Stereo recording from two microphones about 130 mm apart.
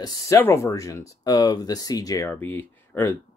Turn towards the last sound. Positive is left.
turn(degrees=15)  # may be behind; listen again after turning